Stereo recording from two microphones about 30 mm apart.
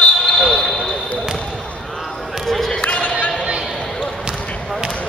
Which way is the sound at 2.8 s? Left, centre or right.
Left.